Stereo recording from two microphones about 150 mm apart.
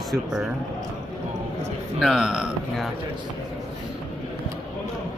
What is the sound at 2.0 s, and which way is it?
Speech, centre (ahead or behind).